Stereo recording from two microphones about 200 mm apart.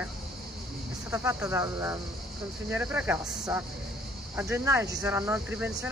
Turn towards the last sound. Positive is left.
turn(degrees=-10)  # may be behind; listen again after turning